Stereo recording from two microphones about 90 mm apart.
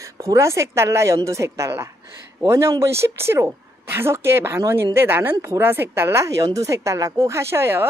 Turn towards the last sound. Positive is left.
turn(degrees=-25)  # may be behind; listen again after turning